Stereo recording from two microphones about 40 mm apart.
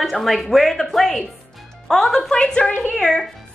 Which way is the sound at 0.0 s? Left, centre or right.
Centre.